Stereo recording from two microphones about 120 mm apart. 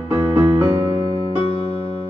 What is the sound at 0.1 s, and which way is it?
Music, 20° right (ahead or behind).